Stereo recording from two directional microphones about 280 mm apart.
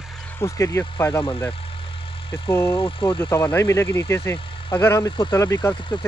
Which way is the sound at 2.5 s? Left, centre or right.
Centre.